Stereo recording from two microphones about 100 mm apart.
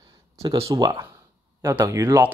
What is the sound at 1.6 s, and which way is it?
Speech, 30° right (ahead or behind).